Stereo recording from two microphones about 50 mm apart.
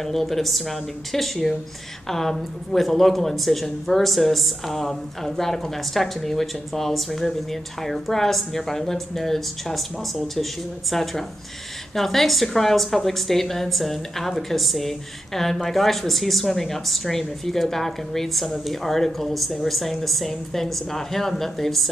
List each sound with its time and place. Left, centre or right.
0.0 s a woman's voice: centre